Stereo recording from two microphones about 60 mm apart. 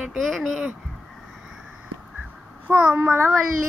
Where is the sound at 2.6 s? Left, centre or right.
Right.